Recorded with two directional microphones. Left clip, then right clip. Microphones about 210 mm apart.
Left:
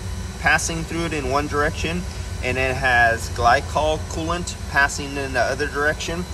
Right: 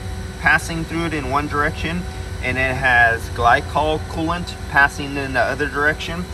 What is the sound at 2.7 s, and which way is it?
Speech, 5° left (ahead or behind).